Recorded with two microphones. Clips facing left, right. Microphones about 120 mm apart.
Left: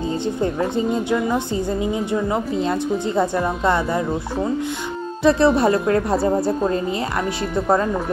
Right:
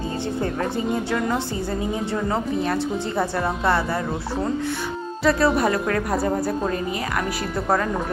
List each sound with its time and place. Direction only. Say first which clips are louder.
0.4 s a woman's voice: left 4 dB; 15° left (ahead or behind)
5.2 s speech: left 4 dB; 25° left (ahead or behind)
7.5 s speech: left 4 dB; 25° left (ahead or behind)